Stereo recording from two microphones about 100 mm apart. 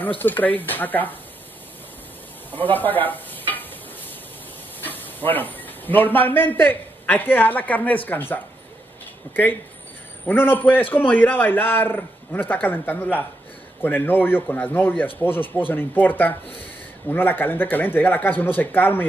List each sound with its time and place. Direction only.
0.2 s speech: 20° left (ahead or behind)
2.5 s stir: 20° left (ahead or behind)
4.8 s a man's voice: 20° left (ahead or behind)